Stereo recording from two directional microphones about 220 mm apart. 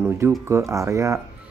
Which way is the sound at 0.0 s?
10° right (ahead or behind).